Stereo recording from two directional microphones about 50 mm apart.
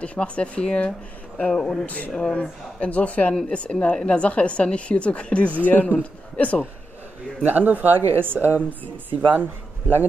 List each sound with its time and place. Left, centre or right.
0.0 s a woman's voice: left
1.5 s speech: centre
1.9 s a man's voice: left
5.7 s a man's voice: left
7.4 s speech: right